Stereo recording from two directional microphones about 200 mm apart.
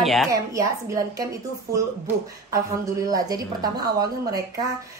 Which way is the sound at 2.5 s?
15° right (ahead or behind).